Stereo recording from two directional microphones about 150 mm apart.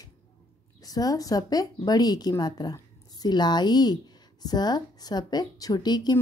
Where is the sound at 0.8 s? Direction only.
25° left (ahead or behind).